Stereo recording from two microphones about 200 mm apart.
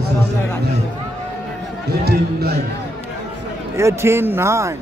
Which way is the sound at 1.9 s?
50° right (ahead or behind).